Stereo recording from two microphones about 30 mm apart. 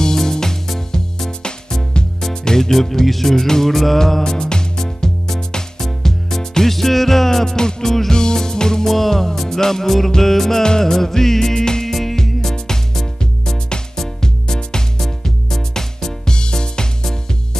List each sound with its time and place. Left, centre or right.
0.0 s music: centre
3.7 s music: centre
4.4 s music: left
8.8 s music: centre
11.9 s music: centre
12.2 s music: centre
14.2 s music: left
16.3 s music: left